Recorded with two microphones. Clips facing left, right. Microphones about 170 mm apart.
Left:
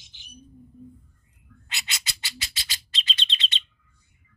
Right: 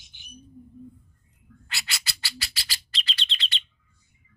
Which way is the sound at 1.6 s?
20° left (ahead or behind).